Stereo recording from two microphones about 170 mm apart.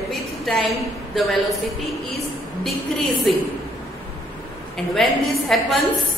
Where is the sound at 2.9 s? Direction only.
5° left (ahead or behind).